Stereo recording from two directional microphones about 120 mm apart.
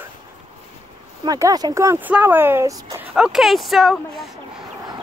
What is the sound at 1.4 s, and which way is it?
Speech, 30° right (ahead or behind).